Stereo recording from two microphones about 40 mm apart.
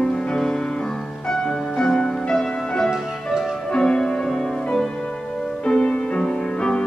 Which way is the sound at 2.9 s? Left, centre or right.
Centre.